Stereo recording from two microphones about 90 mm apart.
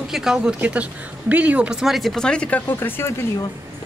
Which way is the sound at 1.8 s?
Centre (ahead or behind).